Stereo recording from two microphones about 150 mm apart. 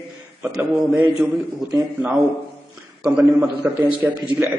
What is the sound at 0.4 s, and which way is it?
Speech, 10° right (ahead or behind).